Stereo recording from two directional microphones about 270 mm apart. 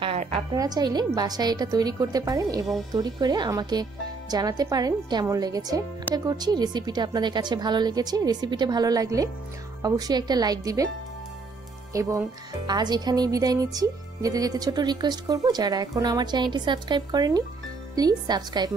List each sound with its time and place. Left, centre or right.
0.0 s speech: centre
11.9 s speech: centre